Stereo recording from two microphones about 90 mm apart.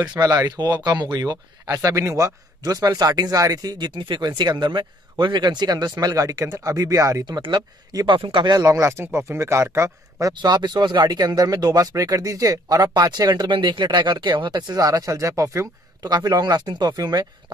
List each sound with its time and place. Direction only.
0.0 s speech: 45° right (ahead or behind)
8.1 s speech: 70° right (ahead or behind)
8.5 s speech: 40° right (ahead or behind)
10.3 s speech: 55° right (ahead or behind); by 15.7 s 30° right (ahead or behind)
16.0 s speech: 45° right (ahead or behind)